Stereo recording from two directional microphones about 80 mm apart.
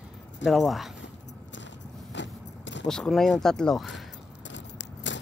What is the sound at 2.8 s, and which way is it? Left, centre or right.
Speech, centre.